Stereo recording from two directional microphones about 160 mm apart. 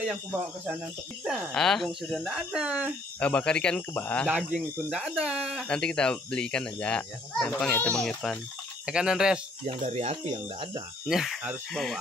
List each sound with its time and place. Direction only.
1.2 s speech: centre (ahead or behind)
3.2 s speech: 10° left (ahead or behind)
4.7 s speech: 5° right (ahead or behind)
9.8 s speech: 45° right (ahead or behind)
11.1 s speech: centre (ahead or behind)